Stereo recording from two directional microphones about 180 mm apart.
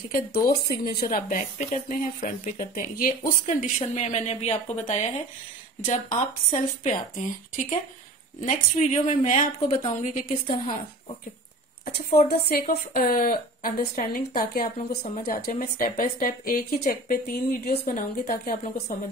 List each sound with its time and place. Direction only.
0.7 s speech: 60° left (ahead or behind); by 10.6 s 40° left (ahead or behind)
12.3 s speech: 55° left (ahead or behind)